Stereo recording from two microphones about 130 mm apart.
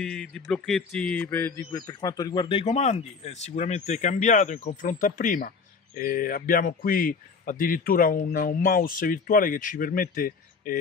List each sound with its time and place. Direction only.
0.0 s a man's voice: 5° left (ahead or behind)
1.7 s speech: 30° left (ahead or behind)
2.6 s a man's voice: 55° left (ahead or behind); by 10.8 s 90° left